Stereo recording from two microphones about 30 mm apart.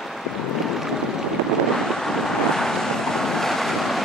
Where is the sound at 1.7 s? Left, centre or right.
Centre.